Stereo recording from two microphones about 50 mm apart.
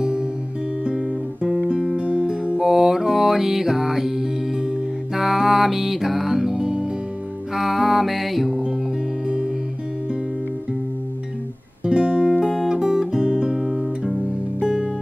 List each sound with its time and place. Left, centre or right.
0.0 s music: centre
0.8 s guitar: centre
2.0 s music: centre
11.8 s music: centre
12.4 s guitar: centre
14.6 s music: centre